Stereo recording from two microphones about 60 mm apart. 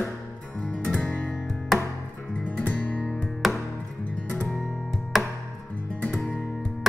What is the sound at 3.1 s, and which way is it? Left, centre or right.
Music, centre.